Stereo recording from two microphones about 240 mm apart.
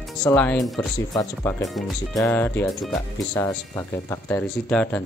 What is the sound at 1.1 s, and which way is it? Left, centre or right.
Speech, centre.